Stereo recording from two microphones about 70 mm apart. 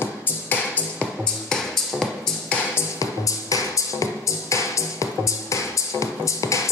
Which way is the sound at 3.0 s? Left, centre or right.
Left.